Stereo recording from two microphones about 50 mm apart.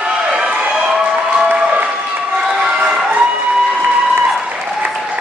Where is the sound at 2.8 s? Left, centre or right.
Right.